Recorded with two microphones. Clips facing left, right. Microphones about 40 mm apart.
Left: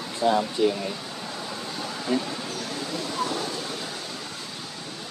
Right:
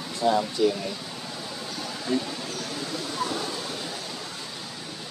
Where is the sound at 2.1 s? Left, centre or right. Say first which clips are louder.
Left 1 dB; left.